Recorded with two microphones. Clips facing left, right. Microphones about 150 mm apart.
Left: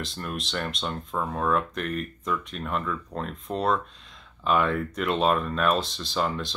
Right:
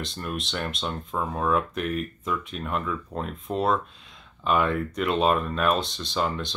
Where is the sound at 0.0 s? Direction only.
Centre (ahead or behind).